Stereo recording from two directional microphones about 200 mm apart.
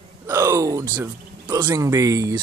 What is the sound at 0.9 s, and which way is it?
Speech, 15° right (ahead or behind).